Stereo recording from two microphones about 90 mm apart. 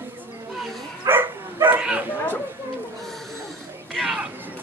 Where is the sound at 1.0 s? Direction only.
25° right (ahead or behind).